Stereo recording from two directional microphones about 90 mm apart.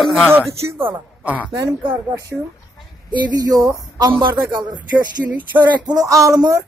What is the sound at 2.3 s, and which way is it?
Speech, 5° right (ahead or behind).